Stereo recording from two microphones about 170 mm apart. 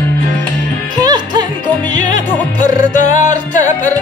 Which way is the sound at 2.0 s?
50° left (ahead or behind).